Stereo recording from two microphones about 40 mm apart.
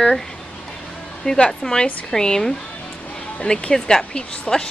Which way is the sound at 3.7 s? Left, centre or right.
Centre.